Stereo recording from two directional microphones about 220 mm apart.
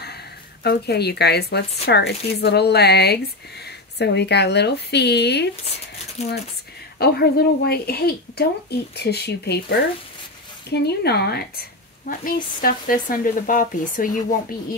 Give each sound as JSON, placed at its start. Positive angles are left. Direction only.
{"t": 0.7, "sound": "speech", "side_deg": 45}
{"t": 6.2, "sound": "speech", "side_deg": 30}
{"t": 7.0, "sound": "speech", "side_deg": 45}